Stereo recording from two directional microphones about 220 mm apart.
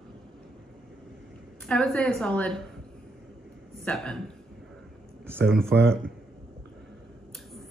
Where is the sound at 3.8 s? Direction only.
5° left (ahead or behind).